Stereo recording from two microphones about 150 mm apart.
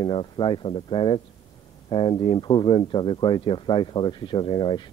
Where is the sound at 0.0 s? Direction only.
35° left (ahead or behind).